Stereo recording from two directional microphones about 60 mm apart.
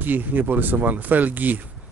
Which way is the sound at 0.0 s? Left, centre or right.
Right.